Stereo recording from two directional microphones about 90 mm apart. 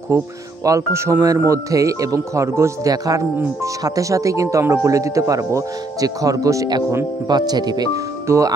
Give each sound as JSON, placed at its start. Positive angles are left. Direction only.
{"t": 0.1, "sound": "speech", "side_deg": -30}
{"t": 7.2, "sound": "speech", "side_deg": -50}
{"t": 8.3, "sound": "speech", "side_deg": -30}